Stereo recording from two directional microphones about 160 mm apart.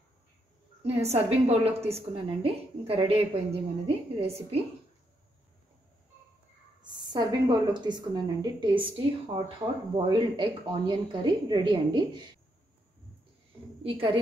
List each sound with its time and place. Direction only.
0.8 s a woman's voice: 40° right (ahead or behind)
6.8 s a woman's voice: 25° right (ahead or behind)
13.8 s a woman's voice: 35° right (ahead or behind)